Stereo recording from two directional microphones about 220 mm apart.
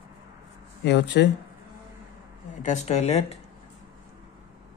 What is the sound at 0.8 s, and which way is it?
Speech, 50° left (ahead or behind).